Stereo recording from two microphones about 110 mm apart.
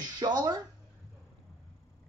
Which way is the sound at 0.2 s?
35° right (ahead or behind).